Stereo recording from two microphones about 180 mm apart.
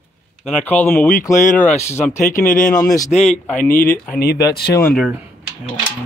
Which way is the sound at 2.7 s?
20° left (ahead or behind).